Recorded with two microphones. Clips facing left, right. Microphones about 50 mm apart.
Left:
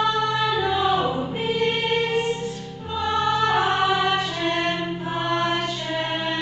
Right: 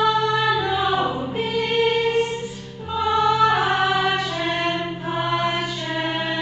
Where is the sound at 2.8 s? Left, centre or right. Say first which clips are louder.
Right 4 dB; centre.